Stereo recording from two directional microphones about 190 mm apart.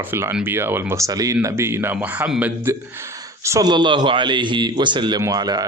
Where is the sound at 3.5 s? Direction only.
20° right (ahead or behind).